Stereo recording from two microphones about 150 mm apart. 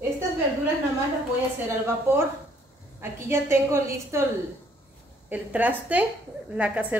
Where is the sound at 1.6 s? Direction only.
15° right (ahead or behind).